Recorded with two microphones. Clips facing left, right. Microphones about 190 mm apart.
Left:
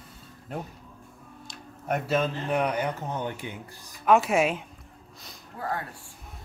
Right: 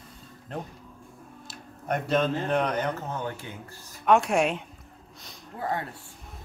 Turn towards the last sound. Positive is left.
turn(degrees=-25)  # may be behind; listen again after turning